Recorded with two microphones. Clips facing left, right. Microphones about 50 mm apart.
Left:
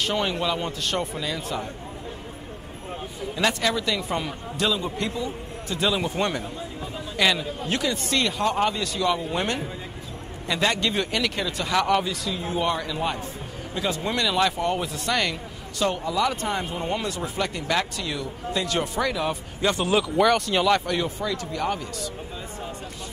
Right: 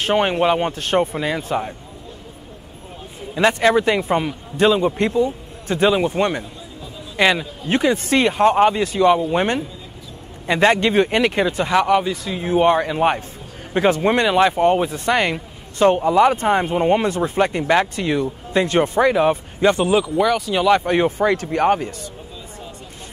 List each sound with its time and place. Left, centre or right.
0.0 s speech: right
3.3 s a man's voice: right
12.3 s speech: right
19.9 s speech: centre
20.8 s speech: right